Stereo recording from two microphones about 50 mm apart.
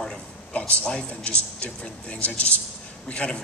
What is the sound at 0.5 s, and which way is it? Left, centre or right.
A man's voice, left.